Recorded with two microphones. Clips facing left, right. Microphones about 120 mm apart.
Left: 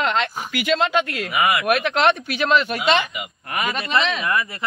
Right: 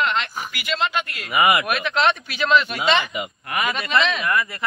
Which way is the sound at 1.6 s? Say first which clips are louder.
Left 3 dB; 60° left (ahead or behind).